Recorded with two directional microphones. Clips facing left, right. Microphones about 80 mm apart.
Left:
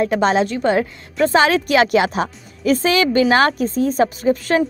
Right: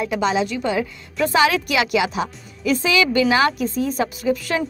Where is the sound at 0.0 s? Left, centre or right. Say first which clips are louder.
Left 4 dB; left.